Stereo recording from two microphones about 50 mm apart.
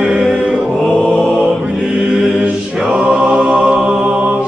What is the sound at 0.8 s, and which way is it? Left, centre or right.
Mantra, left.